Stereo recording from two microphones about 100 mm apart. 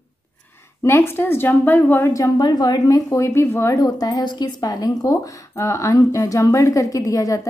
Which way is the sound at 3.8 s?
40° left (ahead or behind).